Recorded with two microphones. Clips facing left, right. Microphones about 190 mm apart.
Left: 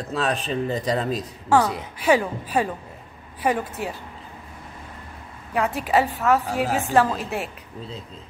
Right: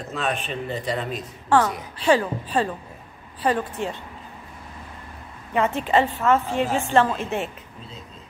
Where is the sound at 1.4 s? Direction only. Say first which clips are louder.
Even; 10° left (ahead or behind).